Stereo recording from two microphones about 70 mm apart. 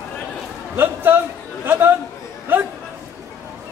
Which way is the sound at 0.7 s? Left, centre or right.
Right.